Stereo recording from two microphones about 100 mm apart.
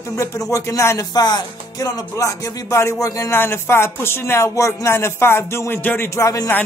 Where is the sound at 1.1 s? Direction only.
40° left (ahead or behind).